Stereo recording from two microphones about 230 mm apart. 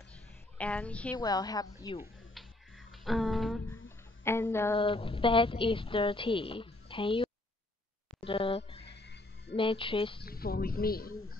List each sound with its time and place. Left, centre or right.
0.1 s a sound: centre
1.1 s speech: centre
2.9 s a sound: centre
4.2 s speech: centre
4.7 s a woman's voice: left
8.8 s music: left
9.6 s a woman's voice: left
10.2 s speech: left
11.1 s television: left